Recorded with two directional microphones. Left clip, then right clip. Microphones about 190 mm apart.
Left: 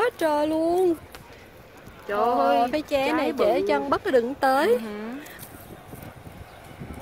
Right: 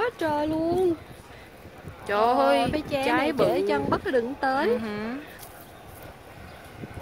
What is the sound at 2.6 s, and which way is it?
Speech, 40° left (ahead or behind).